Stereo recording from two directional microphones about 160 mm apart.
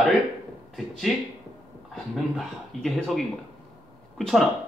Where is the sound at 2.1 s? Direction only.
Centre (ahead or behind).